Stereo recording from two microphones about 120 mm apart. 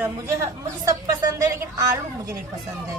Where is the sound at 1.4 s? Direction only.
25° right (ahead or behind).